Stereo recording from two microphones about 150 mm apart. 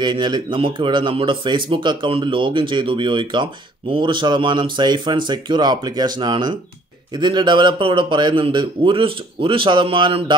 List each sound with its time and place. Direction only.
0.0 s speech: 30° right (ahead or behind)